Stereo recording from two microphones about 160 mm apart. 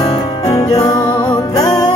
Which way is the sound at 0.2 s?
25° left (ahead or behind).